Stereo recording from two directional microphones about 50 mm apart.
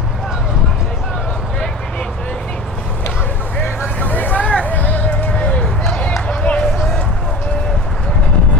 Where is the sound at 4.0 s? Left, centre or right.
Left.